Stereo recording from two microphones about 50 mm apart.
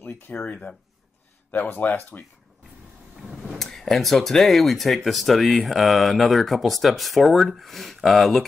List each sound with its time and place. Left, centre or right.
0.5 s speech: left
1.5 s speech: left
3.5 s speech: centre